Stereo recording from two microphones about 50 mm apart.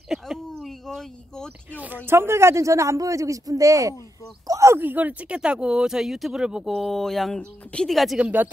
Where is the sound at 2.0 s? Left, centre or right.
Right.